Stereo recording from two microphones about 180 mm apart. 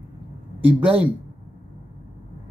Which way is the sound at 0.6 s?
10° right (ahead or behind).